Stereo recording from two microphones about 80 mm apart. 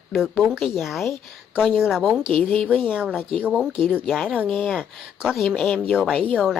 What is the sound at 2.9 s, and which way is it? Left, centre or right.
Speech, centre.